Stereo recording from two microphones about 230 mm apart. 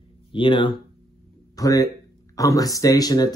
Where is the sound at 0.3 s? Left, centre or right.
Left.